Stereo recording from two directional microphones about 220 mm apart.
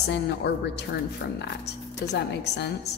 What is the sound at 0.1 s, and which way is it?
Speech, 50° left (ahead or behind).